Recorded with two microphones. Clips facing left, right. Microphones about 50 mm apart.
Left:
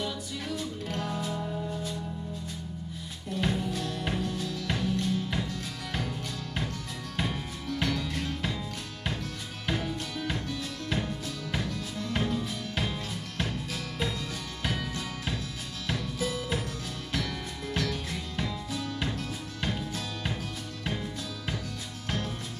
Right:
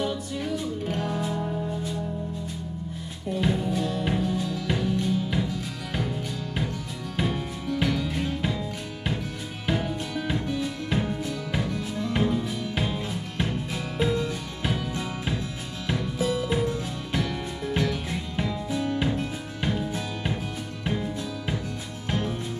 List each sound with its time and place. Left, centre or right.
0.8 s music: centre
3.3 s music: centre